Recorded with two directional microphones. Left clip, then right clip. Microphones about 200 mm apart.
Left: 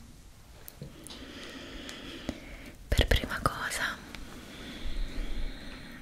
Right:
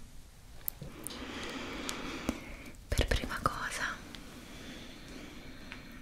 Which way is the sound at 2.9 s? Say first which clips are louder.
Left 5 dB; 15° left (ahead or behind).